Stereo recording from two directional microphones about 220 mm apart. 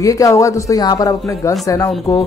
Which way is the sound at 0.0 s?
15° left (ahead or behind).